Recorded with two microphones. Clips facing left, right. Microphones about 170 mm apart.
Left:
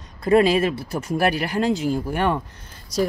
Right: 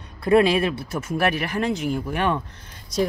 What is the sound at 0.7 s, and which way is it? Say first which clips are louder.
Speech: left 2 dB; 35° left (ahead or behind).